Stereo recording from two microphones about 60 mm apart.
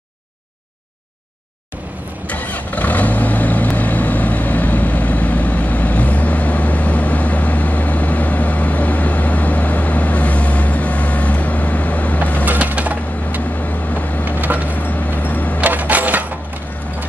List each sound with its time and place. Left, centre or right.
2.2 s vehicle: left
12.4 s a sound: right
14.7 s vehicle: left
15.6 s coin: right